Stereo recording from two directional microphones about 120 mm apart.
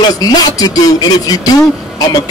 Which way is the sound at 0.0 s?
35° left (ahead or behind).